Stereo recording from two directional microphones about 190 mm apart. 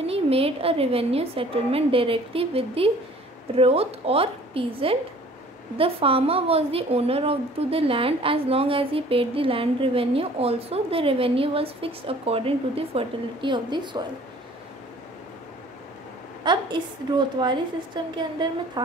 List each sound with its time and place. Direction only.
0.0 s a woman's voice: 30° right (ahead or behind)
16.5 s a sound: 25° right (ahead or behind)
17.4 s a woman's voice: 25° right (ahead or behind)